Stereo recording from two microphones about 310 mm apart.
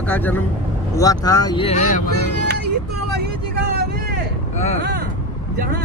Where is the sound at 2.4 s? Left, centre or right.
Right.